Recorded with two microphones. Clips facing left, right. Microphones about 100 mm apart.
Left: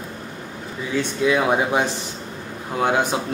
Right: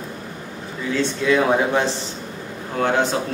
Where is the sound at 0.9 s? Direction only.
15° left (ahead or behind).